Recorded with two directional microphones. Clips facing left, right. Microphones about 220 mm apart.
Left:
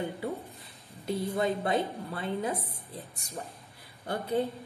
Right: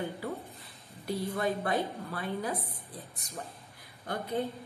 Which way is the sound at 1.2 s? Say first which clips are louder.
Left 2 dB; 25° left (ahead or behind).